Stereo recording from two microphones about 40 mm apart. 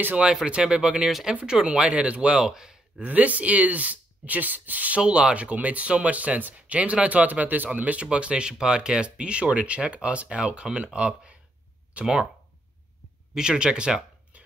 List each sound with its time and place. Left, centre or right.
0.5 s speech: right
1.0 s speech: centre; by 2.4 s right
2.4 s speech: centre
3.0 s speech: right
5.0 s speech: right
13.3 s speech: centre